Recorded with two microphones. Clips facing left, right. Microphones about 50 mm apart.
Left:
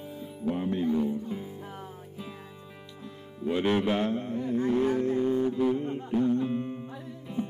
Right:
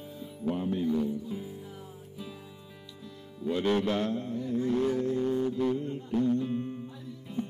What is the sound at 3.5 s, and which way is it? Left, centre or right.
Speech, left.